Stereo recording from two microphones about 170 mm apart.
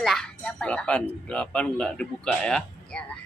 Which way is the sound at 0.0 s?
5° left (ahead or behind).